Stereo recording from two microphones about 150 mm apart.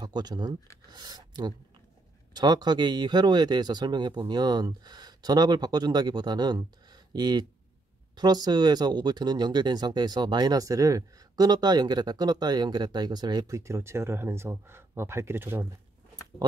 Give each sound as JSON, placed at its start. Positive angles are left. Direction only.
{"t": 0.0, "sound": "speech", "side_deg": -25}